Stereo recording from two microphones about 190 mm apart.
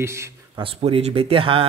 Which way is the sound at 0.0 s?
15° right (ahead or behind).